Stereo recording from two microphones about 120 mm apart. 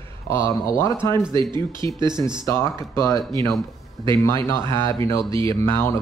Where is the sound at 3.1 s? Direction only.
35° right (ahead or behind).